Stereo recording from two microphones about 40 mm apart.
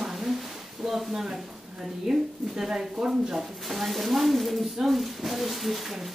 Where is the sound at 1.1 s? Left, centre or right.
Centre.